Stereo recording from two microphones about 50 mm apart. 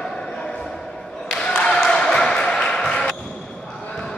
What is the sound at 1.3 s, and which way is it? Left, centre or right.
Applause, centre.